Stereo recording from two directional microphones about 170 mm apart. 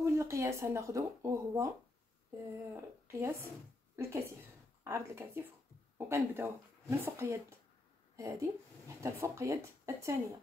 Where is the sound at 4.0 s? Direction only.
15° right (ahead or behind).